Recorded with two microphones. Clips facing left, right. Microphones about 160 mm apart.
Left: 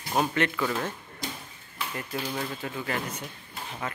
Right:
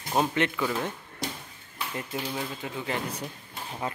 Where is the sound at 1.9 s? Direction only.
10° right (ahead or behind).